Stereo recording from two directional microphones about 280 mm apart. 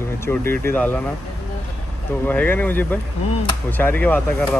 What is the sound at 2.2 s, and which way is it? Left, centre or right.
Speech, centre.